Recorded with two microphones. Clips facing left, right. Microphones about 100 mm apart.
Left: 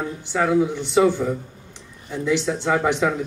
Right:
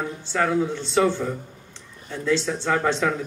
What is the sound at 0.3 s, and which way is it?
A man's voice, 10° left (ahead or behind).